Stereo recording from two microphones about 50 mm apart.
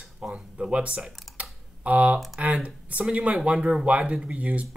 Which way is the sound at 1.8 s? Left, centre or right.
Right.